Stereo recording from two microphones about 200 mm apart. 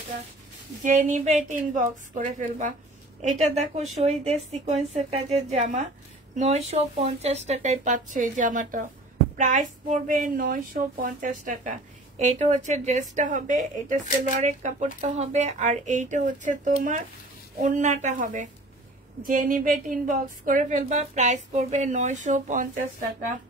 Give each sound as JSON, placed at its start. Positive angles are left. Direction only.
{"t": 0.8, "sound": "a woman's voice", "side_deg": -35}